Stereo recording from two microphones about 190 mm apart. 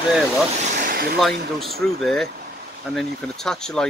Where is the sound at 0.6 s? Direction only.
45° right (ahead or behind).